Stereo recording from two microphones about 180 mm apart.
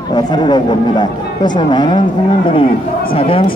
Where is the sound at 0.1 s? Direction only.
25° left (ahead or behind).